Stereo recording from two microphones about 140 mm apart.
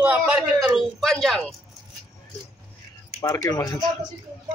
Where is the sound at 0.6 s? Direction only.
Centre (ahead or behind).